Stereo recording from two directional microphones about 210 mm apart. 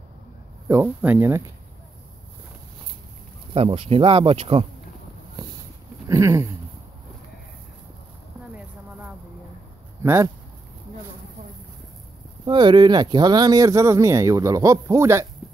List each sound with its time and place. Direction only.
0.7 s speech: 10° right (ahead or behind)
3.5 s speech: 30° right (ahead or behind)
6.0 s speech: 15° right (ahead or behind)
10.0 s speech: 15° right (ahead or behind)
12.4 s speech: 20° right (ahead or behind)